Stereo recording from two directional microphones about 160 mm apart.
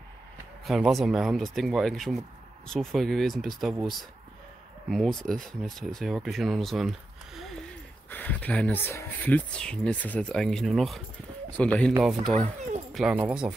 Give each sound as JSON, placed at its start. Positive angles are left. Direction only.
{"t": 0.7, "sound": "speech", "side_deg": 0}
{"t": 4.8, "sound": "speech", "side_deg": 0}
{"t": 7.3, "sound": "a sound", "side_deg": 0}
{"t": 8.1, "sound": "speech", "side_deg": 10}